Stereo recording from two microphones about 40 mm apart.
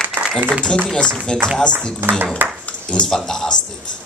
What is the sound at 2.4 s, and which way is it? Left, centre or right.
Speech, right.